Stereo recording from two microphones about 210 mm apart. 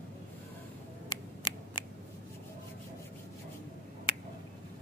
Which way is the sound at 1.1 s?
20° left (ahead or behind).